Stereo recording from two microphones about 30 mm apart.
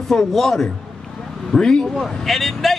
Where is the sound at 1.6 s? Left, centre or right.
Left.